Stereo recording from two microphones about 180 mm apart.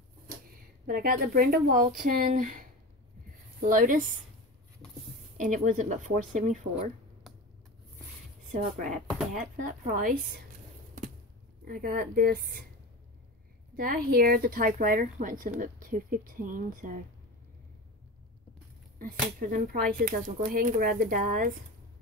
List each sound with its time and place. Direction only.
0.8 s speech: 50° right (ahead or behind)
3.6 s speech: 50° right (ahead or behind)
5.4 s speech: 45° right (ahead or behind)
8.5 s speech: 45° right (ahead or behind)
11.6 s speech: 55° right (ahead or behind)
13.7 s speech: 55° right (ahead or behind)
19.5 s speech: 50° right (ahead or behind)